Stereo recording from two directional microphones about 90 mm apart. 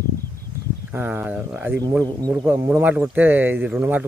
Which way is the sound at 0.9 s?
25° right (ahead or behind).